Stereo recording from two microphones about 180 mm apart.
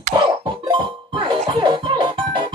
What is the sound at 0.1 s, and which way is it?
Music, 20° right (ahead or behind).